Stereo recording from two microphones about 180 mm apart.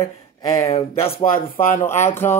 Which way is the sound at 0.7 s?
35° left (ahead or behind).